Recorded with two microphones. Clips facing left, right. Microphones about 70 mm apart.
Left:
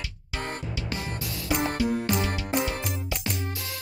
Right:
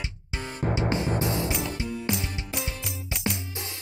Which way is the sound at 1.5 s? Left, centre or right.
Left.